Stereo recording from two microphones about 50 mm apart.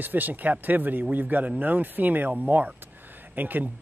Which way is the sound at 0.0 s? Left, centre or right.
Right.